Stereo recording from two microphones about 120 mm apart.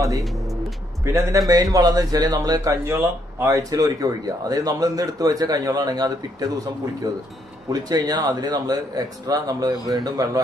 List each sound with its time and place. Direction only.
1.0 s a man's voice: 25° right (ahead or behind)
7.7 s speech: 35° right (ahead or behind)